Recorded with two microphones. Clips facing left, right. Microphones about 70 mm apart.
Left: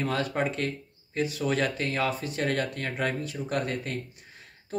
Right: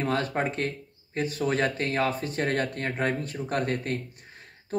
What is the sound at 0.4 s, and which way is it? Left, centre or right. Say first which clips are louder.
Speech: even; right.